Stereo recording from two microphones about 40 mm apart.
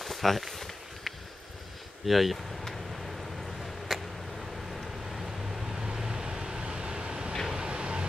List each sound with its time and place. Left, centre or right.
0.0 s a sound: centre
3.9 s vehicle: centre
5.1 s vehicle: centre; by 8.1 s right